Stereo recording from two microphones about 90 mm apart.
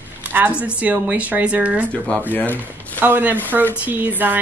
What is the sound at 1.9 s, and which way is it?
Speech, 15° left (ahead or behind).